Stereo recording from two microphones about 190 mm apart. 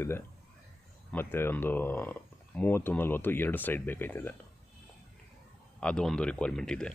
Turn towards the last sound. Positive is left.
turn(degrees=5)  # may be behind; listen again after turning